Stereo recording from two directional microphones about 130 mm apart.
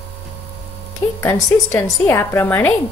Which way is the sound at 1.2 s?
20° left (ahead or behind).